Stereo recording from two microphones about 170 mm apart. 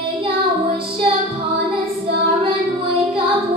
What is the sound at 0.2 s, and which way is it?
Child singing, 30° right (ahead or behind).